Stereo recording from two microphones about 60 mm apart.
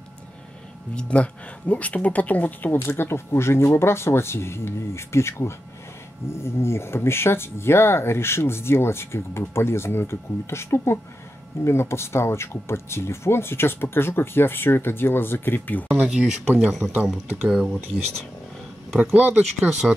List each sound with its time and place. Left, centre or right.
0.9 s speech: centre
2.9 s speech: left
16.1 s speech: centre
16.8 s speech: right
17.5 s speech: centre
19.1 s speech: right